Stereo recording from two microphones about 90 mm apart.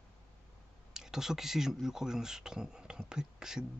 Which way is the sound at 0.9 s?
5° right (ahead or behind).